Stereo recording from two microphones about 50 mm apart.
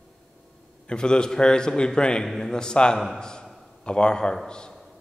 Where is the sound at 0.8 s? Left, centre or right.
Centre.